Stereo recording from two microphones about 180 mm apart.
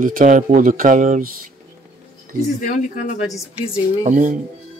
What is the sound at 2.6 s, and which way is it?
Speech, 45° left (ahead or behind).